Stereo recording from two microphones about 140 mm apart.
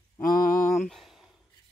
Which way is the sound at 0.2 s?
75° left (ahead or behind).